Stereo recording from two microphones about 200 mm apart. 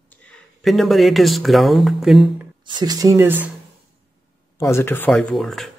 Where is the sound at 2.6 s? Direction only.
20° right (ahead or behind).